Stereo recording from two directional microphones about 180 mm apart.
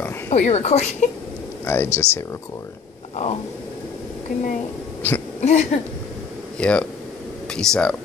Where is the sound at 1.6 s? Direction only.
15° left (ahead or behind).